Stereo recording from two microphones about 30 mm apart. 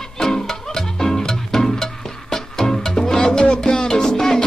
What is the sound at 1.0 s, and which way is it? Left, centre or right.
Music, centre.